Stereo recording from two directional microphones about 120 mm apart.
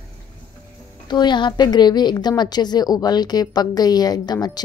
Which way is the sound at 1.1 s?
40° left (ahead or behind).